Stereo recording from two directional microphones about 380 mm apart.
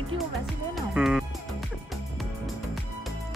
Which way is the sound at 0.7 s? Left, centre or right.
Centre.